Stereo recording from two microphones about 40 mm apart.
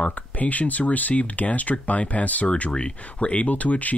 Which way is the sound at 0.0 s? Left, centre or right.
Left.